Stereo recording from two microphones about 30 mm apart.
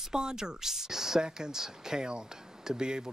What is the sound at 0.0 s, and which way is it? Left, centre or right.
Speech, right.